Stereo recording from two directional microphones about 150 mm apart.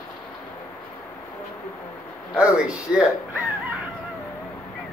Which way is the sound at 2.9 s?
10° right (ahead or behind).